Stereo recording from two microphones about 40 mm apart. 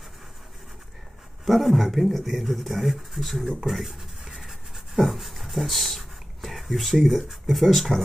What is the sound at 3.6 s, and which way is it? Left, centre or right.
Writing, centre.